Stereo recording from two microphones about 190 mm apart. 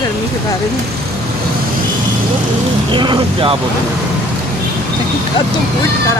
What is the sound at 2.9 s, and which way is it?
Speech, 25° right (ahead or behind).